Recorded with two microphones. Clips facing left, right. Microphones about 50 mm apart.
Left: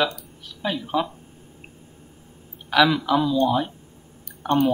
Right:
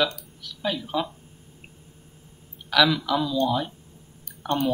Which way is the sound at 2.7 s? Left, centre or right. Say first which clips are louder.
Left 3 dB; left.